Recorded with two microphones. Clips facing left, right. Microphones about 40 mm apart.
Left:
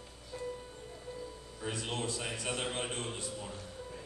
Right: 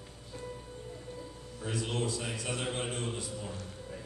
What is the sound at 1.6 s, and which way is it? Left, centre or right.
A man's voice, left.